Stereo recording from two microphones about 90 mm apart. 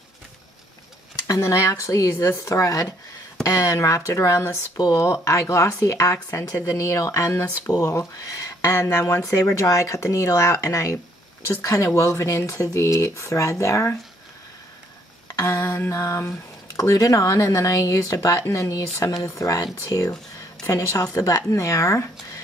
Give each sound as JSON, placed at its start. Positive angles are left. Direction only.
{"t": 1.2, "sound": "speech", "side_deg": 35}
{"t": 15.2, "sound": "speech", "side_deg": 40}